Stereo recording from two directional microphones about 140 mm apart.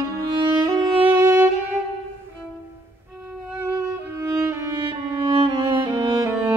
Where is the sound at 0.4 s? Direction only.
30° right (ahead or behind).